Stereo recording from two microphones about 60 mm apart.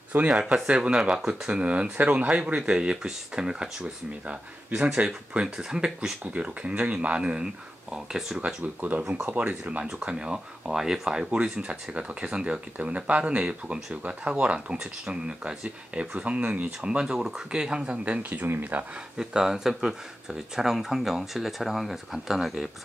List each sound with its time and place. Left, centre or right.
0.3 s speech: centre
5.9 s speech: right
8.8 s speech: right
19.1 s speech: centre